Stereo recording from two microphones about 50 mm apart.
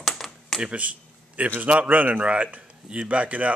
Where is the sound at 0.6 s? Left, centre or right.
Right.